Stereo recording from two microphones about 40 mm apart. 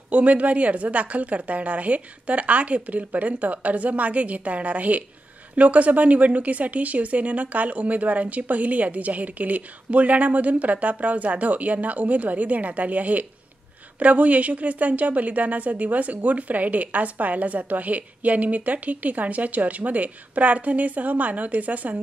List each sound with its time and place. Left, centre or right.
0.1 s a woman's voice: right